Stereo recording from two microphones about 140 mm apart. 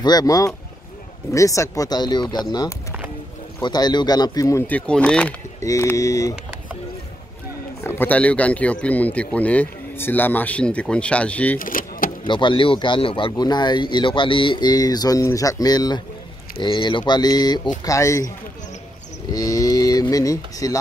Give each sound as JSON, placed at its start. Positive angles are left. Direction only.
{"t": 0.0, "sound": "speech", "side_deg": 30}
{"t": 4.6, "sound": "speech", "side_deg": 10}
{"t": 5.6, "sound": "speech", "side_deg": 20}
{"t": 7.8, "sound": "speech", "side_deg": 15}
{"t": 11.5, "sound": "vehicle", "side_deg": 85}
{"t": 12.3, "sound": "speech", "side_deg": 35}
{"t": 19.3, "sound": "speech", "side_deg": 25}